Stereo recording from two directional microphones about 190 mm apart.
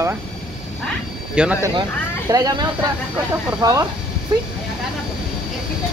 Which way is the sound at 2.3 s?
20° right (ahead or behind).